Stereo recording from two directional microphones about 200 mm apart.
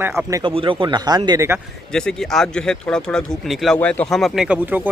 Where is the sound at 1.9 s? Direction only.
5° left (ahead or behind).